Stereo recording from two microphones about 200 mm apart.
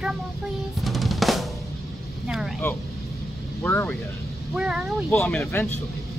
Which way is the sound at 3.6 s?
10° left (ahead or behind).